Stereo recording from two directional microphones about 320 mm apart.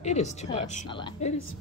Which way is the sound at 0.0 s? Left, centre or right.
Left.